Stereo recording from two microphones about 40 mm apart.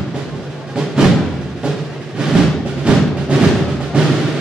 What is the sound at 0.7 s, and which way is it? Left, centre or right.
Music, centre.